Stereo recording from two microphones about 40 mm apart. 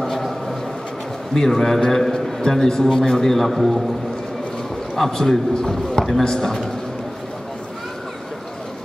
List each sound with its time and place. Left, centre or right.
0.0 s a sound: centre
1.3 s a man's voice: centre
4.9 s a man's voice: centre